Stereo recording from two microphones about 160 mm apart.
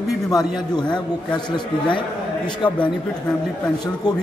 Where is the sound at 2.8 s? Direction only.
5° left (ahead or behind).